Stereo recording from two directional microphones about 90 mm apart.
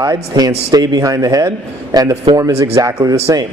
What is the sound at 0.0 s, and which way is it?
A man's voice, 45° right (ahead or behind).